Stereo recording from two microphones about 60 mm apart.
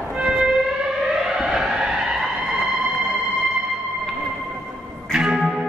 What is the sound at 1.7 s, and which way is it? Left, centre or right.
Vehicle, centre.